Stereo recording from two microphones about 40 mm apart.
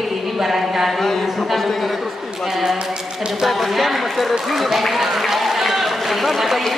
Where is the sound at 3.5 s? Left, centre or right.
Centre.